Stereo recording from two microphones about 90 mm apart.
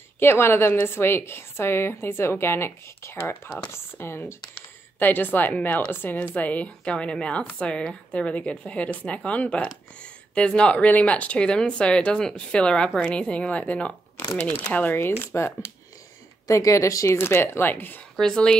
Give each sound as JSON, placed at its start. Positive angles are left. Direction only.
{"t": 0.2, "sound": "a woman's voice", "side_deg": 25}
{"t": 18.1, "sound": "speech", "side_deg": 5}